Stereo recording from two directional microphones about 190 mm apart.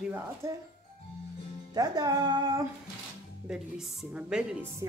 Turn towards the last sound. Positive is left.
turn(degrees=-20)  # may be behind; listen again after turning